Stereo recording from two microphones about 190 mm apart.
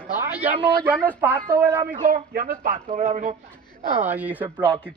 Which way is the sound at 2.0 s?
50° right (ahead or behind).